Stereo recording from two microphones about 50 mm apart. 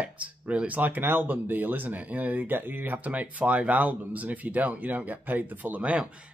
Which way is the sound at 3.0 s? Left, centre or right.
Right.